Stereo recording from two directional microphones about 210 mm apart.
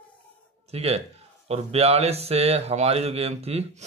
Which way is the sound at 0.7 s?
30° right (ahead or behind).